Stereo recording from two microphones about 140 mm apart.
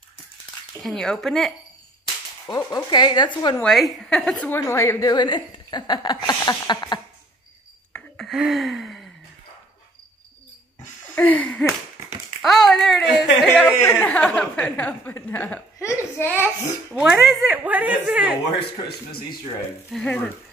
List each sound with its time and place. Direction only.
0.8 s speech: 5° left (ahead or behind)
2.4 s speech: 25° left (ahead or behind)
3.6 s speech: centre (ahead or behind)
4.5 s a sound: 20° left (ahead or behind)
5.1 s speech: 30° left (ahead or behind)
6.2 s a sound: 30° left (ahead or behind)
8.3 s gasp: centre (ahead or behind)
11.1 s speech: 10° left (ahead or behind)
15.9 s a sound: 20° left (ahead or behind)
16.9 s speech: 5° right (ahead or behind)
19.9 s speech: 5° left (ahead or behind)